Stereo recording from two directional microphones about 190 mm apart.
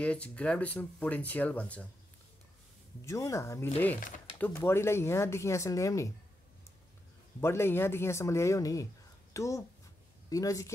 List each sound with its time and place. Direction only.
0.0 s speech: 5° left (ahead or behind)
3.1 s speech: 15° left (ahead or behind)
7.3 s speech: 15° left (ahead or behind)